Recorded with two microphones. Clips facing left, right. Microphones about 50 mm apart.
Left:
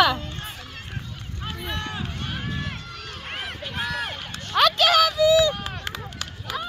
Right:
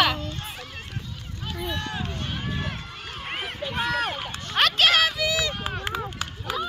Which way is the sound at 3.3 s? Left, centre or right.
Centre.